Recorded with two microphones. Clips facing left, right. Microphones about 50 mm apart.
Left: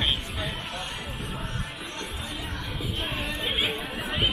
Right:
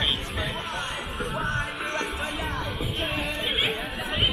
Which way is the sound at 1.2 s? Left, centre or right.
Right.